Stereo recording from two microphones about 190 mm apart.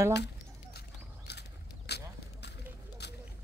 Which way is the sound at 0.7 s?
60° left (ahead or behind).